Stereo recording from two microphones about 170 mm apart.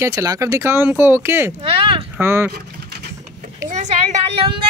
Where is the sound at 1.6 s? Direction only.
30° right (ahead or behind).